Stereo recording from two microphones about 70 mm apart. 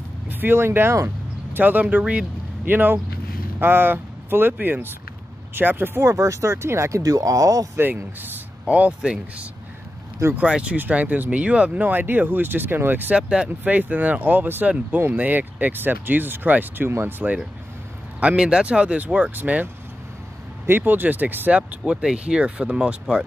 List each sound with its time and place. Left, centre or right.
0.3 s vehicle: right
1.6 s speech: right
6.0 s speech: right
7.0 s speech: right
7.7 s speech: right
13.1 s speech: centre
13.5 s speech: right
18.2 s speech: centre